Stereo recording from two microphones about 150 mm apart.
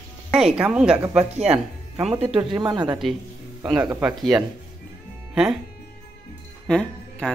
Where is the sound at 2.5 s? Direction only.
30° right (ahead or behind).